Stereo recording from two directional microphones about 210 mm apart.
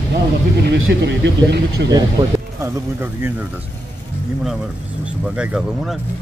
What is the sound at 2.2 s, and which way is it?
Speech, 15° right (ahead or behind).